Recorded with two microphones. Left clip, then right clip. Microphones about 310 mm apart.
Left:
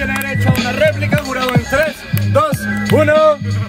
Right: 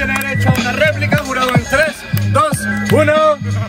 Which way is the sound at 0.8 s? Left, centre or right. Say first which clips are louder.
Left 1 dB; right.